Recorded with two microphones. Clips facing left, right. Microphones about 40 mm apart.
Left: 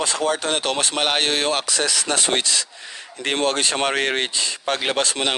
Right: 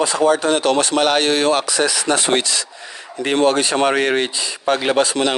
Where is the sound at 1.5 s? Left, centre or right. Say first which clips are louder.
Right 5 dB; right.